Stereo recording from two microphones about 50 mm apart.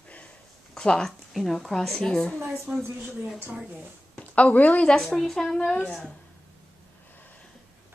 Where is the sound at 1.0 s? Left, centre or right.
Centre.